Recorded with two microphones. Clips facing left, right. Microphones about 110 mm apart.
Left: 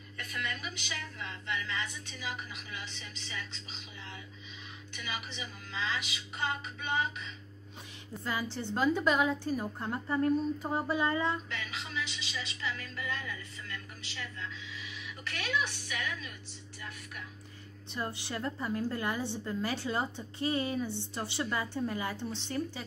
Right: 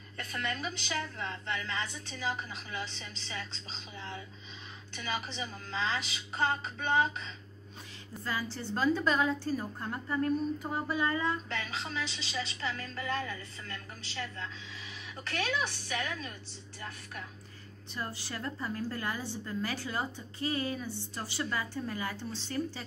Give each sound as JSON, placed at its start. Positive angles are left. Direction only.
{"t": 0.2, "sound": "speech", "side_deg": -40}
{"t": 8.2, "sound": "a woman's voice", "side_deg": 20}
{"t": 11.4, "sound": "speech", "side_deg": -40}
{"t": 17.9, "sound": "a woman's voice", "side_deg": 20}